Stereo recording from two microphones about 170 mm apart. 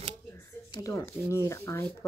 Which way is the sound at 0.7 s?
20° left (ahead or behind).